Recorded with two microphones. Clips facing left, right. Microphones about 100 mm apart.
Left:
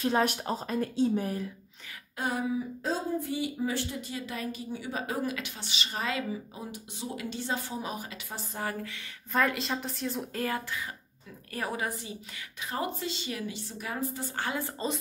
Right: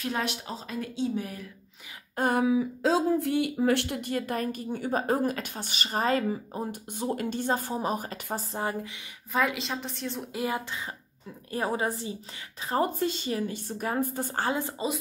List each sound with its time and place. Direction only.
0.2 s speech: 45° left (ahead or behind)
2.1 s a sound: 50° right (ahead or behind)
2.4 s speech: 90° right; by 8.5 s 40° right (ahead or behind)
8.5 s speech: 20° right (ahead or behind)
9.3 s a woman's voice: 5° right (ahead or behind)
10.3 s a woman's voice: 15° right (ahead or behind); by 14.6 s 35° right (ahead or behind)
14.6 s a woman's voice: 20° right (ahead or behind)